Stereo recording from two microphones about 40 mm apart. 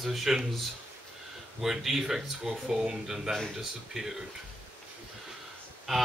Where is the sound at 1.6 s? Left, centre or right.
Centre.